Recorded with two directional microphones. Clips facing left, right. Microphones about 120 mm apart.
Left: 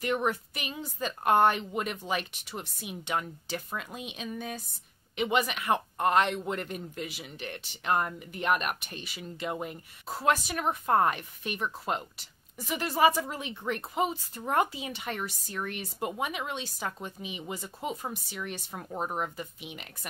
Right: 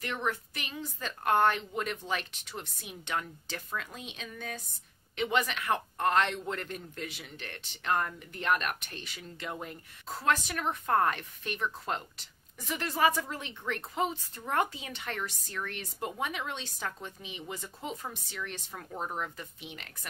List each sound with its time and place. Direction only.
0.0 s speech: 15° left (ahead or behind)